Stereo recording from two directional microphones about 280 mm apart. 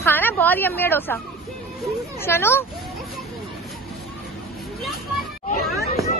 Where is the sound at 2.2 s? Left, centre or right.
Centre.